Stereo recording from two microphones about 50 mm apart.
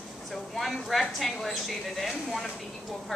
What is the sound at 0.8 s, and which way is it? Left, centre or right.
Speech, centre.